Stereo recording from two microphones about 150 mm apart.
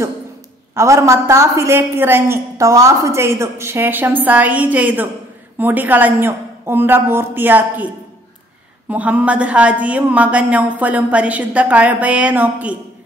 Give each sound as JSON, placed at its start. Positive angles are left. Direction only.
{"t": 0.7, "sound": "a woman's voice", "side_deg": -20}